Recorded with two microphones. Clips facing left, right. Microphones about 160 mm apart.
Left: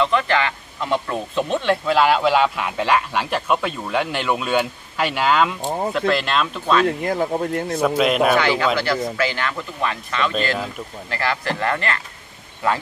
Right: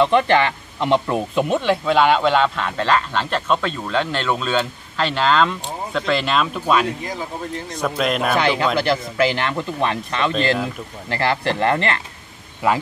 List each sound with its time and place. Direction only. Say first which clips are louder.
0.0 s speech: right 4 dB; 30° right (ahead or behind)
1.1 s speech: right 3 dB; 10° right (ahead or behind)
1.6 s speech: left 1 dB; centre (ahead or behind)
7.0 s speech: left 7 dB; 55° left (ahead or behind)
7.8 s a man's voice: left 3 dB; 5° left (ahead or behind)
8.4 s speech: even; 25° right (ahead or behind)